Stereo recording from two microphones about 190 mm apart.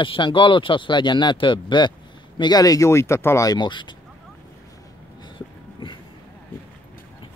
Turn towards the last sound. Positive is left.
turn(degrees=25)  # may be behind; listen again after turning